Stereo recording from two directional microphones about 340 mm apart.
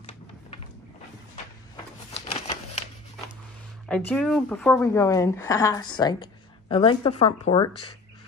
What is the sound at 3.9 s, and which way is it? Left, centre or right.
A woman's voice, centre.